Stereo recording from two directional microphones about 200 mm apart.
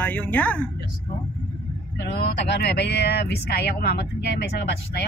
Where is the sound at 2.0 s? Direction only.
55° left (ahead or behind).